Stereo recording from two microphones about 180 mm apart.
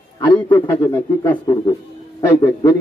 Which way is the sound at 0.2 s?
25° left (ahead or behind).